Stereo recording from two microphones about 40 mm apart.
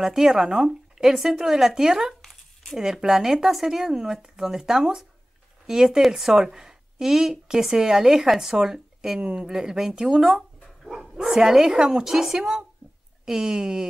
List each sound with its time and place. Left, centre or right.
0.0 s speech: centre
2.2 s a sound: centre
2.8 s speech: centre
6.0 s speech: centre
10.2 s dog: centre
11.2 s speech: centre